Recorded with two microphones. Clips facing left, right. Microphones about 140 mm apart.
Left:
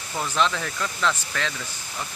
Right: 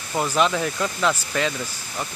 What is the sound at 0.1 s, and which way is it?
Speech, 25° right (ahead or behind).